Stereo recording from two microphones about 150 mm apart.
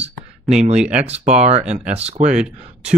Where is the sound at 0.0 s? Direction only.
45° right (ahead or behind).